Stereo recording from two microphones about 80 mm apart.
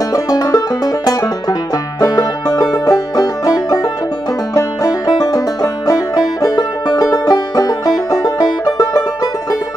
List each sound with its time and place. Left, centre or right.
0.1 s banjo: left
4.6 s music: left